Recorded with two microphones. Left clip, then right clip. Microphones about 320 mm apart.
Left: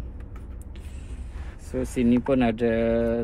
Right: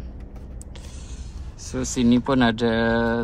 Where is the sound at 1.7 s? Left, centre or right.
Centre.